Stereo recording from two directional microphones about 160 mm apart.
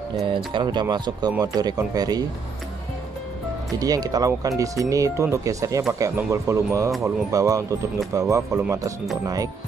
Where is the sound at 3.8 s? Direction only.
25° right (ahead or behind).